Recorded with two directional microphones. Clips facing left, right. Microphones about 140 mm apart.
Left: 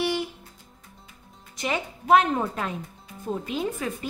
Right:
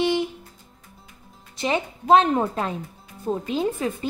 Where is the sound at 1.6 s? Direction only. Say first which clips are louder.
Right 4 dB; 30° right (ahead or behind).